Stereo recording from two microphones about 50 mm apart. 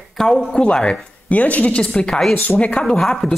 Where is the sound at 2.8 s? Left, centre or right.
Centre.